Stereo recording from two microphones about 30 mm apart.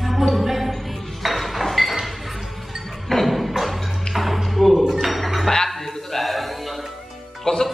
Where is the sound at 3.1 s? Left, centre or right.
Centre.